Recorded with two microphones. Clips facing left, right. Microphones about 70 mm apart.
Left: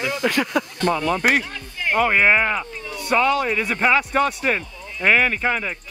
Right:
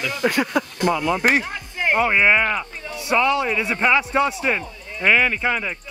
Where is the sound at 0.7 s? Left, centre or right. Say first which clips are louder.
Even; centre.